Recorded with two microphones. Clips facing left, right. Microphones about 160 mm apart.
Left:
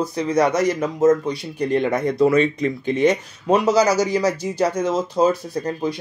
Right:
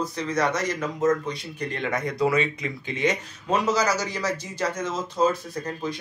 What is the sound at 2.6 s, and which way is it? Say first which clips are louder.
Speech: left 8 dB; 45° left (ahead or behind).